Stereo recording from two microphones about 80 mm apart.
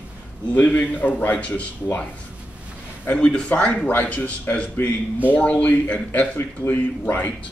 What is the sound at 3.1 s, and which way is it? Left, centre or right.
Speech, centre.